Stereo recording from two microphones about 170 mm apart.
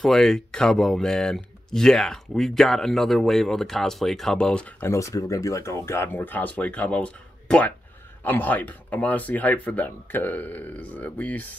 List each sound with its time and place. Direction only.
0.0 s speech: centre (ahead or behind)